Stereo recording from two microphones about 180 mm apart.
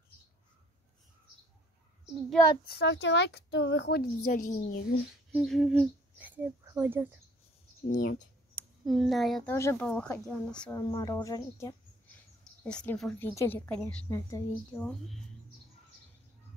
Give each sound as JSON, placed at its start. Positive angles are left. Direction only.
{"t": 2.6, "sound": "speech", "side_deg": 65}
{"t": 4.3, "sound": "a woman's voice", "side_deg": 45}
{"t": 5.3, "sound": "speech", "side_deg": 0}
{"t": 7.9, "sound": "a woman's voice", "side_deg": 50}
{"t": 8.8, "sound": "speech", "side_deg": 0}
{"t": 9.5, "sound": "a woman's voice", "side_deg": 15}
{"t": 10.9, "sound": "a woman's voice", "side_deg": 25}
{"t": 12.6, "sound": "a woman's voice", "side_deg": 5}